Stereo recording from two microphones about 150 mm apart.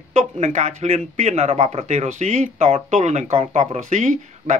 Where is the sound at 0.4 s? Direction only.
50° right (ahead or behind).